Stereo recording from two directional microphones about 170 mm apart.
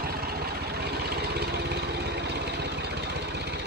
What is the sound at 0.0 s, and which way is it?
Vehicle, 65° right (ahead or behind).